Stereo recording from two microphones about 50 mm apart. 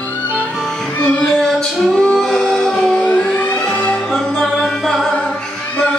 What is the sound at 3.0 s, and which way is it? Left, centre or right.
Music, left.